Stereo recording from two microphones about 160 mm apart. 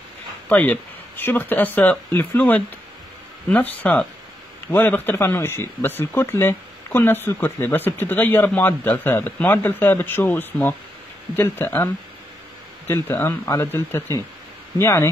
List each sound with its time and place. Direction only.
0.5 s speech: 10° left (ahead or behind)